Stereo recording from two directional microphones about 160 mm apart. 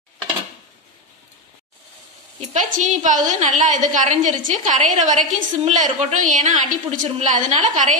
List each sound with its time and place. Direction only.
2.7 s a woman's voice: 50° right (ahead or behind)